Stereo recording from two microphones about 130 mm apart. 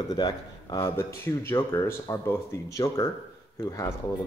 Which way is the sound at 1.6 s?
20° left (ahead or behind).